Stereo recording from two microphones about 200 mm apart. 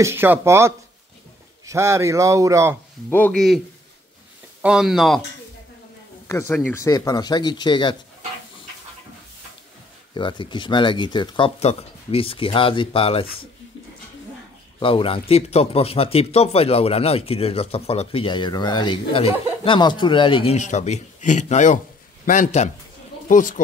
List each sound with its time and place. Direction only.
0.0 s speech: 10° right (ahead or behind)
3.1 s speech: 5° left (ahead or behind)
6.7 s speech: 15° left (ahead or behind)
10.1 s speech: 25° left (ahead or behind)
14.8 s a man's voice: 25° left (ahead or behind)